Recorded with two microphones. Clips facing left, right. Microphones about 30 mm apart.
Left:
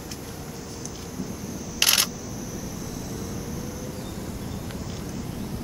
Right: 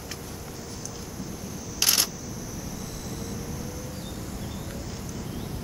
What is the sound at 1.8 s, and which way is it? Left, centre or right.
Camera, centre.